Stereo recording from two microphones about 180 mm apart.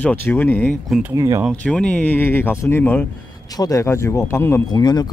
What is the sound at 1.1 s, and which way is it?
Speech, 20° right (ahead or behind).